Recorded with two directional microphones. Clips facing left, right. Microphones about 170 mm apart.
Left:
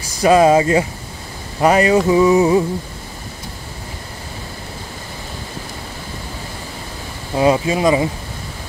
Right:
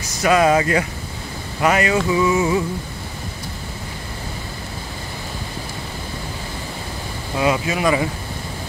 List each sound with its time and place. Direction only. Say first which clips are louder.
0.2 s speech: left 4 dB; 30° left (ahead or behind)
1.6 s a sound: left 5 dB; 35° left (ahead or behind)
7.3 s speech: left 5 dB; 30° left (ahead or behind)